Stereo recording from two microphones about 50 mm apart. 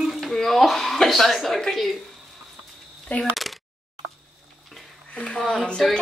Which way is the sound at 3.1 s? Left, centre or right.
Left.